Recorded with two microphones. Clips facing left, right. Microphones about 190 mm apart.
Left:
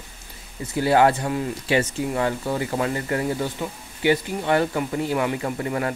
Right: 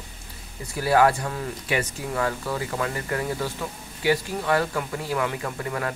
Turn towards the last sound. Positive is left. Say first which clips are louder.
# left 4 dB
turn(degrees=25)  # may be behind; listen again after turning